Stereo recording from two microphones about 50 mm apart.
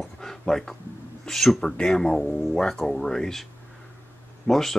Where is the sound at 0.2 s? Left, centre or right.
Centre.